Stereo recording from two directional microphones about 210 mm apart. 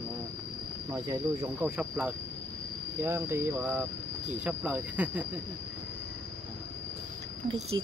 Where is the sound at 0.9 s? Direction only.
15° right (ahead or behind).